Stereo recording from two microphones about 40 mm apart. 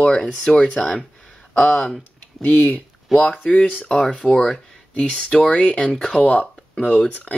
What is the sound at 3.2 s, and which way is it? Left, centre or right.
Speech, left.